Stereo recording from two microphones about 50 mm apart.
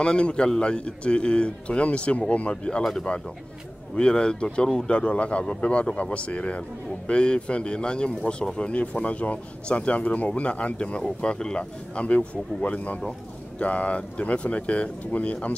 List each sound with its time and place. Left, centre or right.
0.0 s speech: left
2.8 s speech: centre
3.9 s speech: centre